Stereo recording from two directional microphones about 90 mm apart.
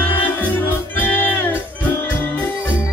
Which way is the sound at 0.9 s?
20° left (ahead or behind).